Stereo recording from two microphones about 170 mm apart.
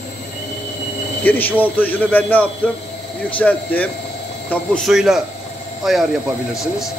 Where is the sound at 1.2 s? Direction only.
10° left (ahead or behind).